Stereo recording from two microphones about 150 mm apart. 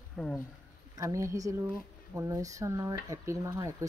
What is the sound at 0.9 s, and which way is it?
Speech, 20° right (ahead or behind).